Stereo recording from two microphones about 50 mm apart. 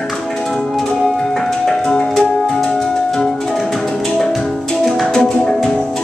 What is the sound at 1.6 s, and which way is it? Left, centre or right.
Music, centre.